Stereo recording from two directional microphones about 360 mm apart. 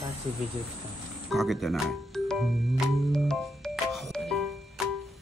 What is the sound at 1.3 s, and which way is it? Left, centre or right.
Speech, centre.